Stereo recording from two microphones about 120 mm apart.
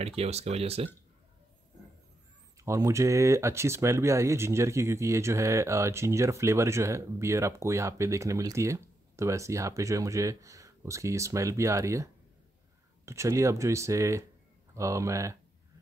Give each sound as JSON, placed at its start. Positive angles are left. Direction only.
{"t": 0.0, "sound": "speech", "side_deg": -60}
{"t": 2.6, "sound": "speech", "side_deg": -25}